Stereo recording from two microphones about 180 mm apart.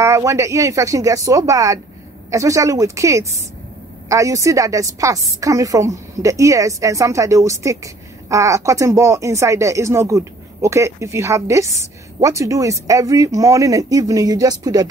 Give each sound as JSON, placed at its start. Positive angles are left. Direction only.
{"t": 0.0, "sound": "speech", "side_deg": -15}